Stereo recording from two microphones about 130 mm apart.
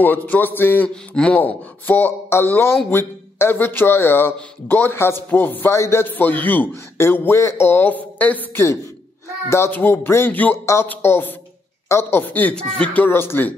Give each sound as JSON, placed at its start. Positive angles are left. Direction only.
{"t": 0.0, "sound": "a man's voice", "side_deg": 15}